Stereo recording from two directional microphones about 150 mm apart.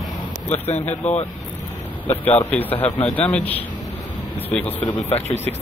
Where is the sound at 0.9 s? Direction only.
50° left (ahead or behind).